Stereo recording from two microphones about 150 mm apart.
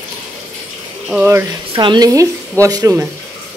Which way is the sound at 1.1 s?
15° right (ahead or behind).